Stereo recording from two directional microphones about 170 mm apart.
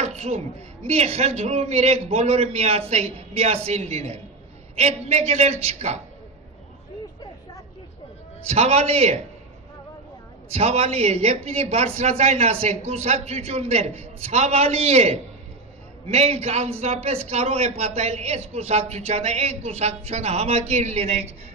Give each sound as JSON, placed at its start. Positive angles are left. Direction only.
{"t": 0.0, "sound": "a sound", "side_deg": -40}
{"t": 0.8, "sound": "a man's voice", "side_deg": -40}
{"t": 8.5, "sound": "a man's voice", "side_deg": -40}
{"t": 10.5, "sound": "a man's voice", "side_deg": -40}